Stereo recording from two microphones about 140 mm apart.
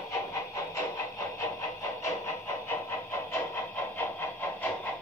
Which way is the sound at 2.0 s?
20° left (ahead or behind).